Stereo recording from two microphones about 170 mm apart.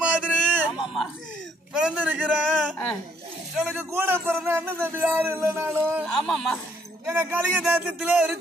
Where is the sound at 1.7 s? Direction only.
5° right (ahead or behind).